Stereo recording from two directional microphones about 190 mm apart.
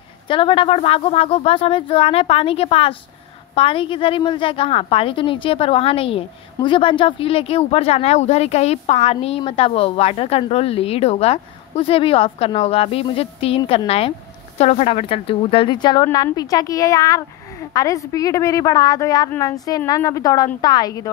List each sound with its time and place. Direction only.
0.3 s a woman's voice: 25° left (ahead or behind)